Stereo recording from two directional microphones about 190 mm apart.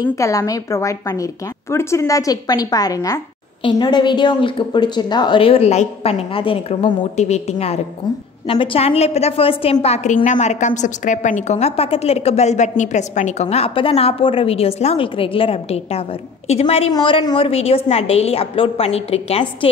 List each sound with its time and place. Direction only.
0.0 s a woman's voice: 15° left (ahead or behind); by 19.7 s 30° left (ahead or behind)